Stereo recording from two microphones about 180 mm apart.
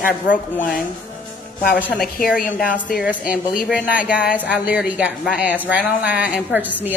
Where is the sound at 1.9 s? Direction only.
55° left (ahead or behind).